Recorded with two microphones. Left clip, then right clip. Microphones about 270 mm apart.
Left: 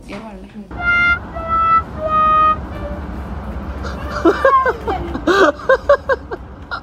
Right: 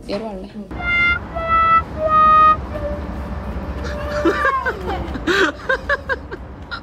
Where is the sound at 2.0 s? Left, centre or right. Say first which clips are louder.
Right 2 dB; centre.